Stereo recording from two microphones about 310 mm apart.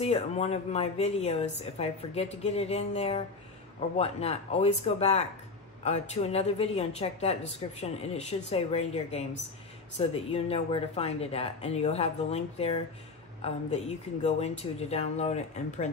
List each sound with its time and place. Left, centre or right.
0.0 s a woman's voice: centre
14.2 s a woman's voice: left